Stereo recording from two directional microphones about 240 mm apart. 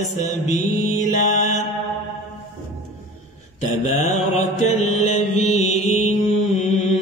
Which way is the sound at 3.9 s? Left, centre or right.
Left.